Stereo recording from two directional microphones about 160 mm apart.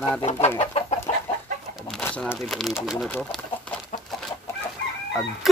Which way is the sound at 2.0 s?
10° left (ahead or behind).